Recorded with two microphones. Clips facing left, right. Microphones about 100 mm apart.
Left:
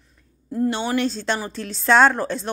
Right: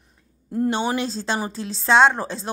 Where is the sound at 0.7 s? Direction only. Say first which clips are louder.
Left 1 dB; 15° right (ahead or behind).